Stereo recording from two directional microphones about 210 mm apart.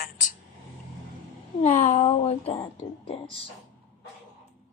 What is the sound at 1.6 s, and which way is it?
Speech, 35° left (ahead or behind).